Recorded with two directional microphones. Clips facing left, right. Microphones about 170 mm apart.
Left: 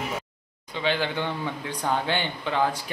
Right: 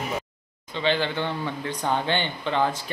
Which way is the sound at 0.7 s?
10° left (ahead or behind).